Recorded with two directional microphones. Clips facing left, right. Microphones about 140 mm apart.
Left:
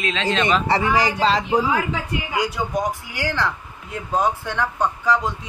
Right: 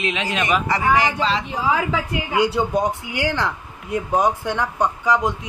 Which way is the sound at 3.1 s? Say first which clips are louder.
Right 2 dB; 15° right (ahead or behind).